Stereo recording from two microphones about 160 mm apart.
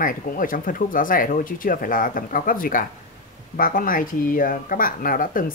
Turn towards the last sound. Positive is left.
turn(degrees=60)  # may be behind; listen again after turning